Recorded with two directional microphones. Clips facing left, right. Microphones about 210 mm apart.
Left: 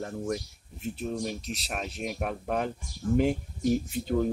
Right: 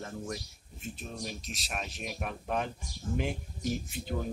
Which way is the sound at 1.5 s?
60° left (ahead or behind).